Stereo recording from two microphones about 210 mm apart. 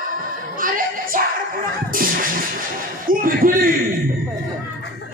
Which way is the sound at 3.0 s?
40° right (ahead or behind).